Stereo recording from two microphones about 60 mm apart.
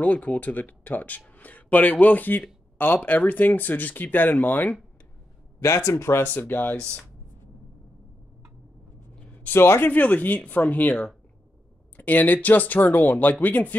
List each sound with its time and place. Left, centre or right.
0.0 s speech: left
5.6 s speech: left
6.3 s speech: left
9.5 s speech: left
9.8 s speech: left